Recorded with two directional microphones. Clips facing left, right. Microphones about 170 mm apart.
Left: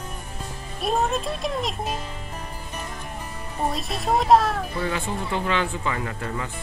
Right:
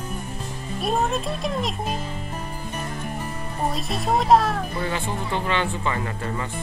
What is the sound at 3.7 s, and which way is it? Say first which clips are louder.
Speech: right 1 dB; centre (ahead or behind).